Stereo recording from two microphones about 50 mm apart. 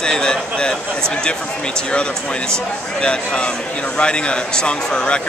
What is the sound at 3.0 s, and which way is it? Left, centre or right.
A man's voice, left.